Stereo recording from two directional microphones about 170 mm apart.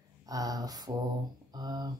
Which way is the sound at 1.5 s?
25° right (ahead or behind).